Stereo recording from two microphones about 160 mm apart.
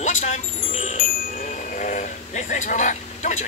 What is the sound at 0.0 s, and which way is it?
Music, 50° left (ahead or behind).